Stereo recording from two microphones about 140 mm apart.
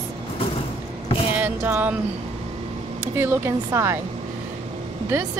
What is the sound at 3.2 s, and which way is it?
Speech, 20° right (ahead or behind).